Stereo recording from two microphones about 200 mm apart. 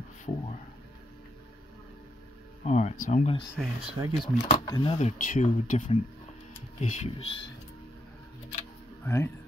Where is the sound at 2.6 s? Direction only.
35° left (ahead or behind).